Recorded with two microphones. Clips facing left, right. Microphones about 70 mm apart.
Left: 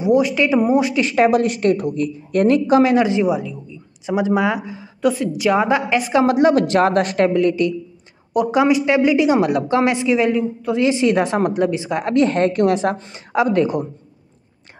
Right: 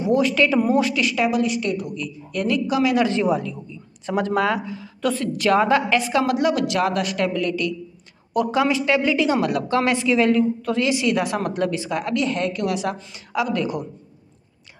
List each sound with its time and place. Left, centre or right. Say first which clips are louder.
0.0 s speech: left 3 dB; centre
1.0 s a woman's voice: left 5 dB; left
3.0 s a woman's voice: left 3 dB; centre
10.9 s a woman's voice: left 6 dB; left